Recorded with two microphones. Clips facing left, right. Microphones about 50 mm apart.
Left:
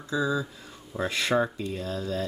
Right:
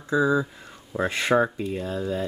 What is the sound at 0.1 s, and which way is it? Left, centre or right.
Speech, right.